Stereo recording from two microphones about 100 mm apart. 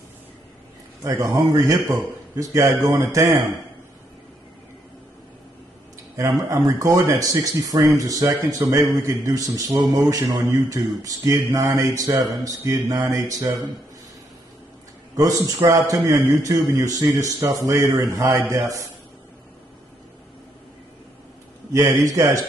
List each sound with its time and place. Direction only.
1.0 s a man's voice: 30° right (ahead or behind)
6.1 s a man's voice: 35° right (ahead or behind)
15.1 s a man's voice: 35° right (ahead or behind)
21.7 s a man's voice: 30° right (ahead or behind)